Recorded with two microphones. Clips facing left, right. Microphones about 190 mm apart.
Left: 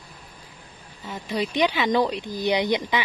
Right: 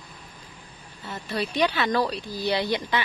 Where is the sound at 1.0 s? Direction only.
15° left (ahead or behind).